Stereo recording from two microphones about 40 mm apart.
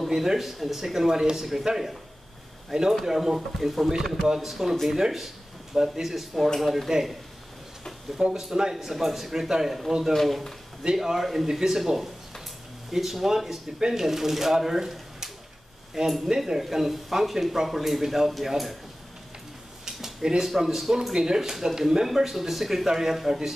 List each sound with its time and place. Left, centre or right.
0.1 s speech: centre
2.7 s speech: centre
8.2 s speech: centre
10.1 s speech: centre
11.0 s speech: centre
19.8 s speech: centre